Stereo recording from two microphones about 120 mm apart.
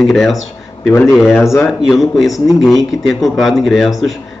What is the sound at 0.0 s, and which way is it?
Speech, 5° left (ahead or behind).